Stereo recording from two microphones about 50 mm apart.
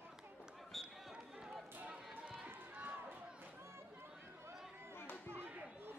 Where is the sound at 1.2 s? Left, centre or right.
Centre.